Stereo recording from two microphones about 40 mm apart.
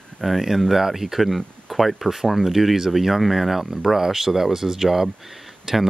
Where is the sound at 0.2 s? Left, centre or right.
Centre.